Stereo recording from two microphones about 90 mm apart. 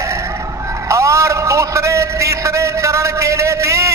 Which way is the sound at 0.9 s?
35° right (ahead or behind).